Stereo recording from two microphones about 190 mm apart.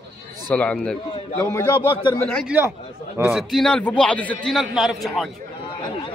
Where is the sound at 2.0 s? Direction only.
25° left (ahead or behind).